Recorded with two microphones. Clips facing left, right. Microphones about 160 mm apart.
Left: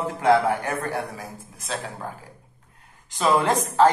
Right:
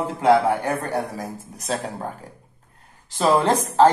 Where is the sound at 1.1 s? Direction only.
40° right (ahead or behind).